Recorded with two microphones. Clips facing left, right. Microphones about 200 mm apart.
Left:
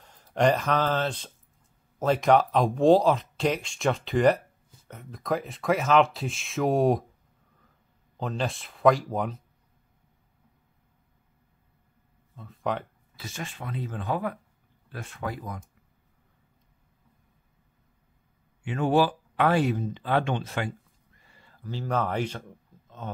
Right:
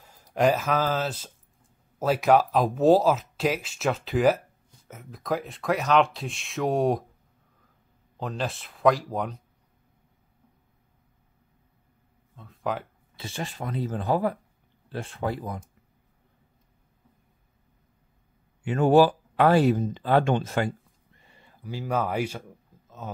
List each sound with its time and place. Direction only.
0.0 s speech: 5° right (ahead or behind)
8.2 s speech: centre (ahead or behind)
12.4 s speech: centre (ahead or behind)
13.1 s speech: 30° right (ahead or behind)
18.6 s speech: 40° right (ahead or behind)
21.2 s speech: 20° right (ahead or behind)